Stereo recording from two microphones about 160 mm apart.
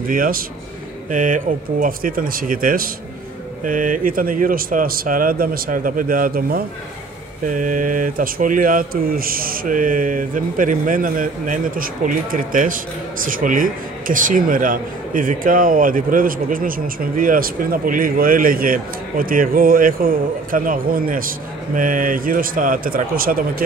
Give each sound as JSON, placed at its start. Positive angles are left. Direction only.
{"t": 0.1, "sound": "speech", "side_deg": -60}